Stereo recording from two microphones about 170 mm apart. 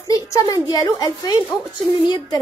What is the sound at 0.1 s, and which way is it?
A woman's voice, 20° left (ahead or behind).